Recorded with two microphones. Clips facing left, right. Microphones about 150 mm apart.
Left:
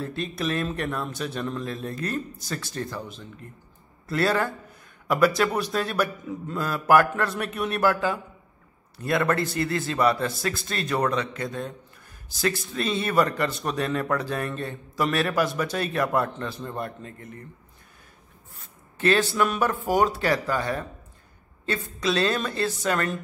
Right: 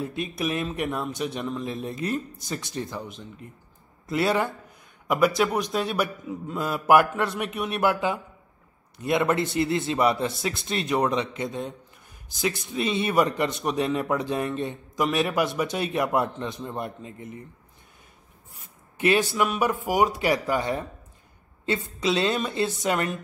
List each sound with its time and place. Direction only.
0.0 s a man's voice: 15° right (ahead or behind)
6.6 s speech: 20° right (ahead or behind)
18.9 s speech: 15° right (ahead or behind)